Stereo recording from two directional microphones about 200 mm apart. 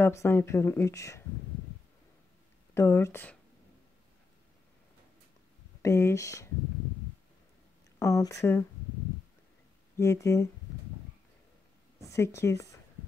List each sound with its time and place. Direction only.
0.0 s speech: 10° left (ahead or behind)
2.7 s speech: 15° left (ahead or behind)
5.8 s speech: 15° left (ahead or behind)
8.0 s speech: 15° left (ahead or behind)
9.9 s speech: 15° left (ahead or behind)
12.0 s a woman's voice: 15° left (ahead or behind)